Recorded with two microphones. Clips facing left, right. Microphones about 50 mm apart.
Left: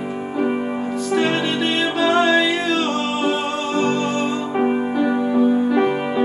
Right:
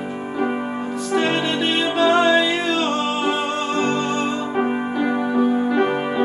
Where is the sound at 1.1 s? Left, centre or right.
Centre.